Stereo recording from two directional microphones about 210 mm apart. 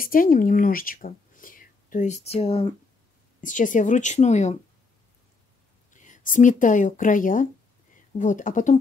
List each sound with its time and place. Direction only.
0.0 s speech: 40° left (ahead or behind)
3.3 s speech: 35° left (ahead or behind)
5.9 s speech: 35° left (ahead or behind)